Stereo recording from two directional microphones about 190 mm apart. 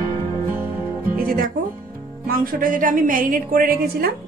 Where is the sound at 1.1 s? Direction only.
50° right (ahead or behind).